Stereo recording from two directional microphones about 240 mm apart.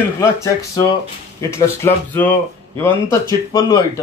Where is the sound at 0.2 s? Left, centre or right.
Centre.